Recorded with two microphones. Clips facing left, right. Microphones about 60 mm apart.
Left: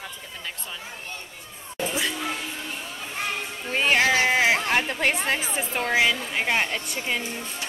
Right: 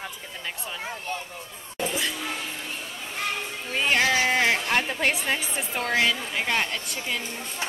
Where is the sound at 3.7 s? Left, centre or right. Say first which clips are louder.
Left 2 dB; centre.